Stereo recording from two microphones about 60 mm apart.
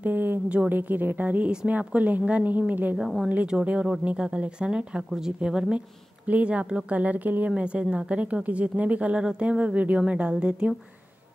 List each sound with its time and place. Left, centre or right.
0.0 s speech: right; by 5.8 s centre
6.2 s speech: right